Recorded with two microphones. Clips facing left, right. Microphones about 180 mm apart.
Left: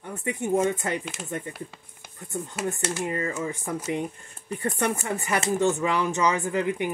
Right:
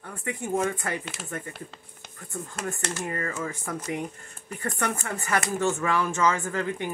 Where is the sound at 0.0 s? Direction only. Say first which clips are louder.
Left 4 dB; 20° left (ahead or behind).